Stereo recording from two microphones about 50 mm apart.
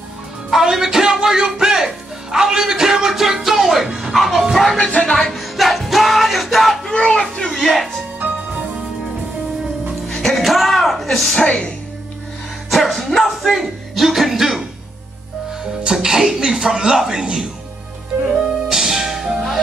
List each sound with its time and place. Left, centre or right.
0.5 s speech: centre
2.3 s music: centre
4.6 s music: centre
5.3 s music: centre
6.9 s a child's voice: centre
10.2 s music: centre
11.3 s music: centre
12.6 s speech: centre
15.8 s speech: centre
18.3 s music: centre